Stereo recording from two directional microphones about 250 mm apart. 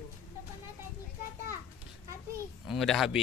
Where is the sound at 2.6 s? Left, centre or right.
Centre.